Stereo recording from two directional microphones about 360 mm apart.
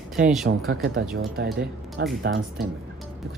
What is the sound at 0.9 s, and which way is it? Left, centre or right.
Speech, right.